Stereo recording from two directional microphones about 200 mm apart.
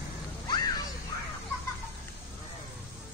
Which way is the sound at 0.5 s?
20° left (ahead or behind).